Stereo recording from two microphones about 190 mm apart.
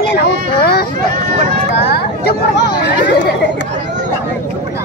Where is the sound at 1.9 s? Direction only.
60° left (ahead or behind).